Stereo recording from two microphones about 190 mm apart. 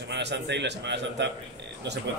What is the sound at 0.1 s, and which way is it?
A man's voice, 65° right (ahead or behind).